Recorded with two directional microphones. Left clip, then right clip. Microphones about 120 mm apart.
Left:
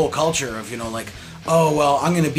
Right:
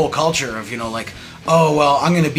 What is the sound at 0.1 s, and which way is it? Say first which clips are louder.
Speech: right 3 dB; 30° left (ahead or behind).